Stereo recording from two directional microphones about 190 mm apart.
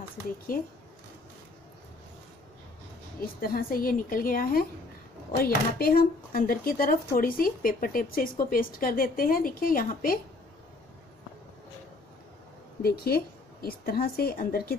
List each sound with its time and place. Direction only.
0.5 s speech: 50° left (ahead or behind)
3.2 s speech: 50° left (ahead or behind)
12.8 s speech: 55° left (ahead or behind)